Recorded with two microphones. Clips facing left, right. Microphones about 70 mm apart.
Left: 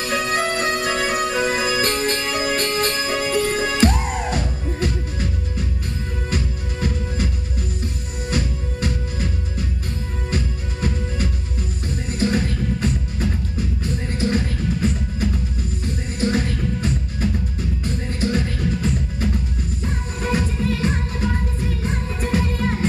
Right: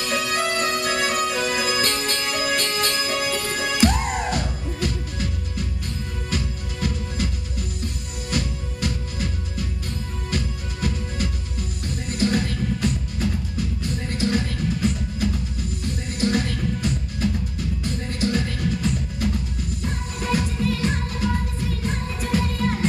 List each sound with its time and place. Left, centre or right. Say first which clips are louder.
0.0 s music: left 2 dB; left
3.9 s music: even; centre
4.7 s music: left 2 dB; left
6.3 s music: left 1 dB; left
8.3 s music: left 2 dB; left
10.3 s music: left 2 dB; left